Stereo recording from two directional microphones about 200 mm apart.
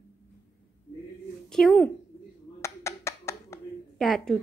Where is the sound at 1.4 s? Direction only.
5° left (ahead or behind).